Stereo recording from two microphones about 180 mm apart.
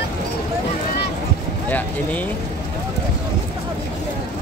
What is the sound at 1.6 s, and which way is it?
Speech, 10° left (ahead or behind).